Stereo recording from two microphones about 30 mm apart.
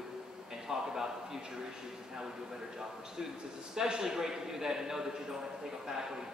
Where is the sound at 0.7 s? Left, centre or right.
Centre.